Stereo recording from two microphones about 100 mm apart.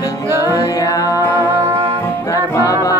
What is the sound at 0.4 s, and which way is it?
Music, 35° left (ahead or behind).